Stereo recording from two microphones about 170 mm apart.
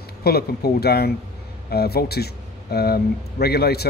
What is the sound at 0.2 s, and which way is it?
Speech, 65° left (ahead or behind).